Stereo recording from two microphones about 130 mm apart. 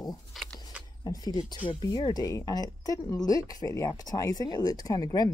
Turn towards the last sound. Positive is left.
turn(degrees=30)  # may be behind; listen again after turning